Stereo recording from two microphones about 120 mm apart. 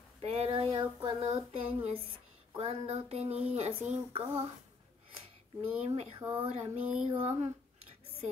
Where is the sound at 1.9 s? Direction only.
55° right (ahead or behind).